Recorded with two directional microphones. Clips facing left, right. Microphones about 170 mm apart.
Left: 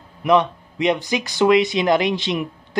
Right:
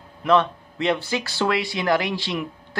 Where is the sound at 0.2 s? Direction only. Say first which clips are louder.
Left 2 dB; 15° left (ahead or behind).